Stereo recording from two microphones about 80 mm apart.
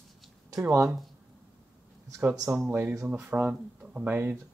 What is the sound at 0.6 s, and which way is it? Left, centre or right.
Speech, right.